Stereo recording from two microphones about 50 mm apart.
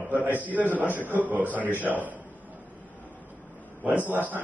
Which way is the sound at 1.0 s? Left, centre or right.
Left.